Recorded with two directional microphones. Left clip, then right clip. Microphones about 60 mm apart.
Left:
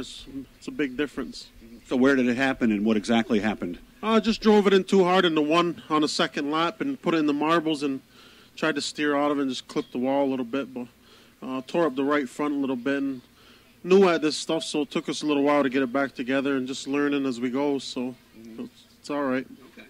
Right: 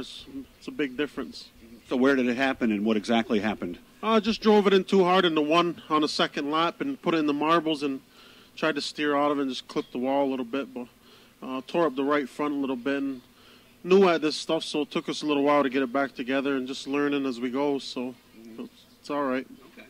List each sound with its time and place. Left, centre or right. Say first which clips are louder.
0.0 s speech: left 1 dB; left